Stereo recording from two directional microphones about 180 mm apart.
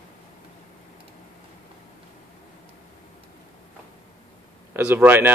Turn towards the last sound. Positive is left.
turn(degrees=-10)  # may be behind; listen again after turning